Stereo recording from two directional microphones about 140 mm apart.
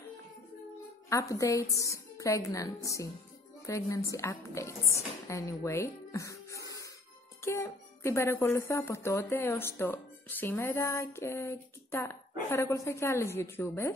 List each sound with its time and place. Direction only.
1.0 s speech: 20° left (ahead or behind)